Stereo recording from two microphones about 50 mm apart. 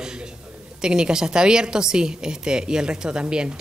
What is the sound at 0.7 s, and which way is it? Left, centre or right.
A woman's voice, centre.